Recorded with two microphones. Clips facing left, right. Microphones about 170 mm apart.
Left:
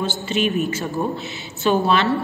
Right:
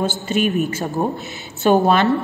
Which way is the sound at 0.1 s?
50° right (ahead or behind).